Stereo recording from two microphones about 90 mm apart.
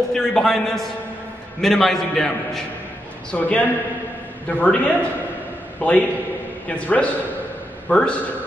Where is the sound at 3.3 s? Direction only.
15° left (ahead or behind).